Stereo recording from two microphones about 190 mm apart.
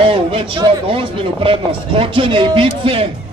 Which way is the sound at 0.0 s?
25° right (ahead or behind).